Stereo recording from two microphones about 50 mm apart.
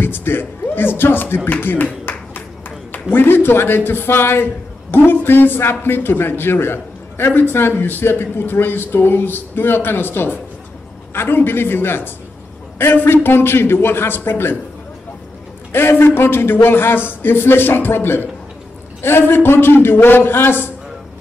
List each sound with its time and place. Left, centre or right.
0.0 s speech: left
2.9 s speech: left
15.7 s speech: left